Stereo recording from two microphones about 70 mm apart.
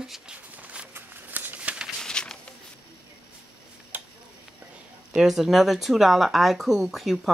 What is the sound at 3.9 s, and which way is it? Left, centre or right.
Tick-tock, right.